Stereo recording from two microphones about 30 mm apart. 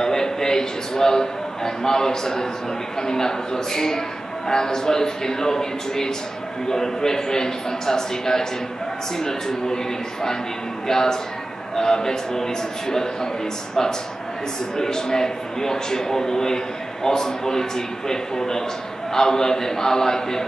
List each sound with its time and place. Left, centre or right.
0.0 s a man's voice: centre
10.9 s a man's voice: centre
14.8 s a man's voice: left